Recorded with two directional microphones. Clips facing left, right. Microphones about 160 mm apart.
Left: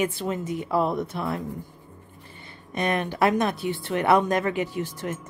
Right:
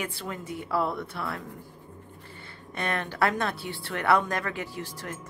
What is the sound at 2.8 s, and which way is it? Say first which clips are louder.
Speech: left 4 dB; 15° left (ahead or behind).